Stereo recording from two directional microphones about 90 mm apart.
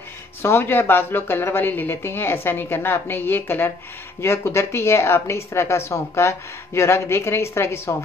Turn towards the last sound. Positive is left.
turn(degrees=30)  # may be behind; listen again after turning